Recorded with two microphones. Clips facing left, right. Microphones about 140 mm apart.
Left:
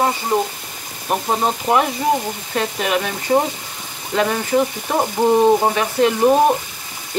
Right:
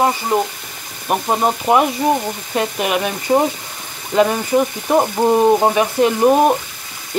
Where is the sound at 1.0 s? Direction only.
15° right (ahead or behind).